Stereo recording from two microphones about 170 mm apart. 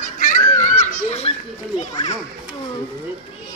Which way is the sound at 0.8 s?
40° left (ahead or behind).